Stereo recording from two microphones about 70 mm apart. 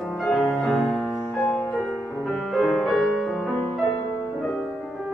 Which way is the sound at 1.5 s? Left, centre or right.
Centre.